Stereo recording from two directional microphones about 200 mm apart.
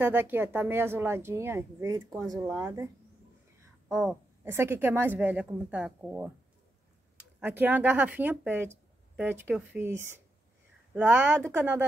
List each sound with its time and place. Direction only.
0.0 s speech: 10° right (ahead or behind)
3.9 s speech: 5° right (ahead or behind)
7.3 s speech: 10° right (ahead or behind)